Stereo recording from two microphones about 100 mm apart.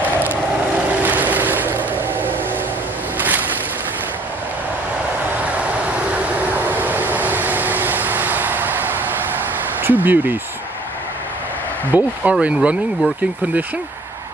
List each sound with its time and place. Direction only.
0.2 s vehicle: 15° right (ahead or behind)
3.2 s boat: 15° right (ahead or behind)
6.1 s vehicle: 20° right (ahead or behind)
9.8 s a sound: 20° right (ahead or behind)
11.9 s speech: 15° right (ahead or behind)